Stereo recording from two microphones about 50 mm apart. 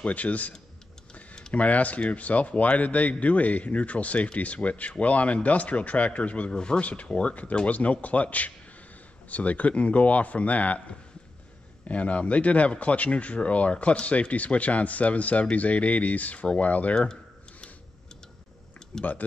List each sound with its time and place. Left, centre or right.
0.0 s speech: left
11.9 s speech: left
16.9 s a sound: centre
18.9 s speech: centre